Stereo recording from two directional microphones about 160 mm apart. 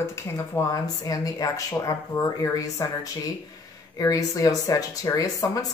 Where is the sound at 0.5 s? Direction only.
15° left (ahead or behind).